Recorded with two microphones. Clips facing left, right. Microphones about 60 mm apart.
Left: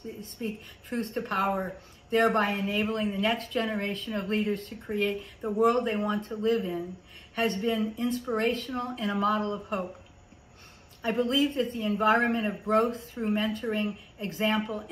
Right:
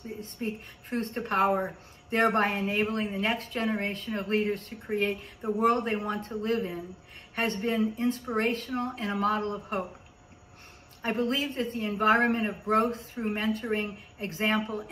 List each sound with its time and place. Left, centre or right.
0.4 s a man's voice: right
11.0 s a man's voice: right